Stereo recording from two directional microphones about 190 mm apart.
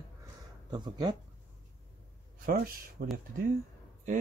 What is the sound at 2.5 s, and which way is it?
Speech, 50° right (ahead or behind).